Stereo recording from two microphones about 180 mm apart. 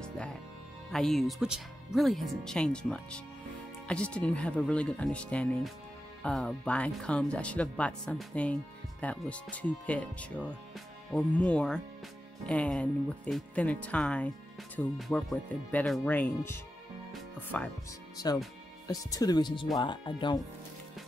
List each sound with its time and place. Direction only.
0.0 s music: 5° left (ahead or behind)
0.9 s speech: centre (ahead or behind)
18.1 s speech: 20° left (ahead or behind)